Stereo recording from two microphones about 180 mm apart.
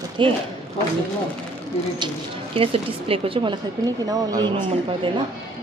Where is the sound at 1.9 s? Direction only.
30° right (ahead or behind).